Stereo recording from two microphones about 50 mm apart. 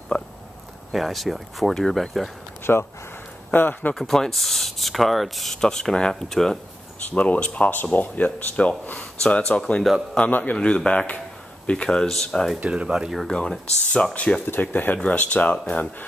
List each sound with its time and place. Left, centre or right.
0.1 s a sound: left
0.9 s speech: centre
2.6 s speech: left
3.9 s speech: centre
7.1 s speech: left
7.7 s speech: left
9.4 s speech: centre
10.3 s speech: left
10.6 s speech: left
12.6 s speech: centre
13.3 s speech: centre
14.4 s speech: left
15.0 s speech: left